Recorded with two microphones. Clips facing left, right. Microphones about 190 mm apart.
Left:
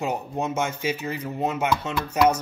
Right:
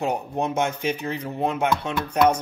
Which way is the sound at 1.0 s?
5° left (ahead or behind).